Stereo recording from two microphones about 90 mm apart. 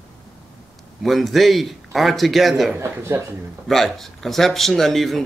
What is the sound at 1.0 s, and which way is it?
Speech, centre (ahead or behind).